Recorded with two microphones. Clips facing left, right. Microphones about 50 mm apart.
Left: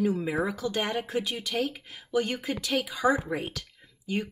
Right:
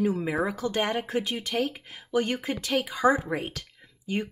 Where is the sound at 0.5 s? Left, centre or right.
Right.